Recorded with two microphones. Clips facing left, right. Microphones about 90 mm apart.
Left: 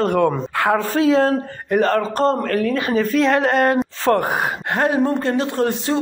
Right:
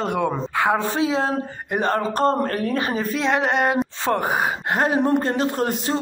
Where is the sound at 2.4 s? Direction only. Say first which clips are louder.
Left 3 dB; 35° right (ahead or behind).